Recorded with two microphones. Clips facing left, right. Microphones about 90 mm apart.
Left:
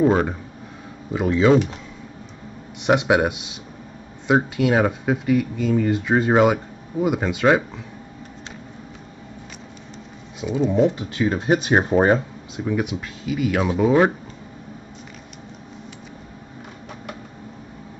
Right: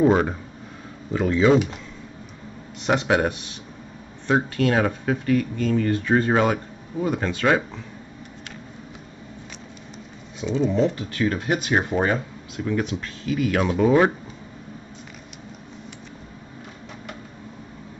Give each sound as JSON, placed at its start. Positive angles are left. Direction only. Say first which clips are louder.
{"t": 0.0, "sound": "speech", "louder": "even", "side_deg": 0}
{"t": 2.9, "sound": "speech", "louder": "left 3 dB", "side_deg": 10}
{"t": 10.4, "sound": "speech", "louder": "left 2 dB", "side_deg": 10}
{"t": 12.5, "sound": "speech", "louder": "left 1 dB", "side_deg": 10}